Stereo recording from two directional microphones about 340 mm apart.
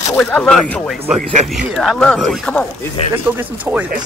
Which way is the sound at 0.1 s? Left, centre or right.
Centre.